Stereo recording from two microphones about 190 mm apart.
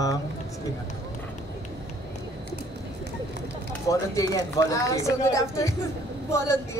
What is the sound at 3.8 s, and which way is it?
Speech, 20° left (ahead or behind).